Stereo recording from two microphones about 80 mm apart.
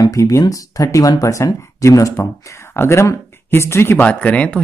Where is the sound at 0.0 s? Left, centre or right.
Left.